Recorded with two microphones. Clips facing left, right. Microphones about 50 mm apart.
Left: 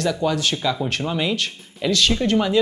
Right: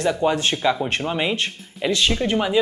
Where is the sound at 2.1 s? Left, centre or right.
Centre.